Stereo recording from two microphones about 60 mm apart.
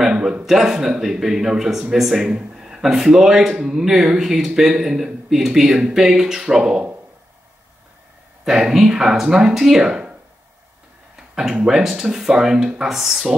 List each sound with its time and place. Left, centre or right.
0.0 s a man's voice: centre
8.5 s a man's voice: centre
11.1 s a man's voice: centre